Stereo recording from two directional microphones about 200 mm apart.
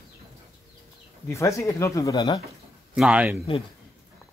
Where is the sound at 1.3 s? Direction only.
15° left (ahead or behind).